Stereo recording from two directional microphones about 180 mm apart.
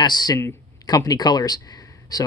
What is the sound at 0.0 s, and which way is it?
Speech, 25° left (ahead or behind).